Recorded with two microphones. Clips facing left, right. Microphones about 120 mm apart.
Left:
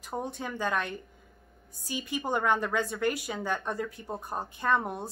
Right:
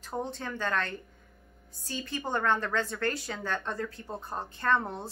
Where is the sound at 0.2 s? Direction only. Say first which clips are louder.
Left 1 dB; 15° left (ahead or behind).